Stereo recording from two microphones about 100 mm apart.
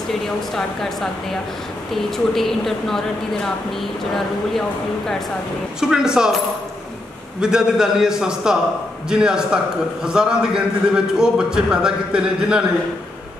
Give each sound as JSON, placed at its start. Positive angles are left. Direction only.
{"t": 0.6, "sound": "speech", "side_deg": 5}
{"t": 5.8, "sound": "a man's voice", "side_deg": -5}
{"t": 7.3, "sound": "a man's voice", "side_deg": -5}